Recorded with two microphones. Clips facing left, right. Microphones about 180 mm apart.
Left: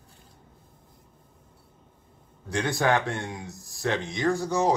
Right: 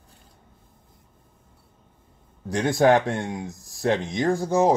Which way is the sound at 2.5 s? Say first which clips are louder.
Right 6 dB; 45° right (ahead or behind).